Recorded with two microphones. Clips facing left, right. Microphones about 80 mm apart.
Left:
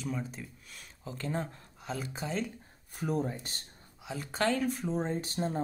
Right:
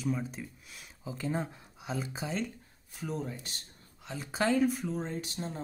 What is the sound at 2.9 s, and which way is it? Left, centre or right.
Speech, left.